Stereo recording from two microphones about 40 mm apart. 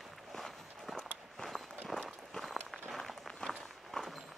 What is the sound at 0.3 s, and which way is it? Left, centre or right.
Walk, centre.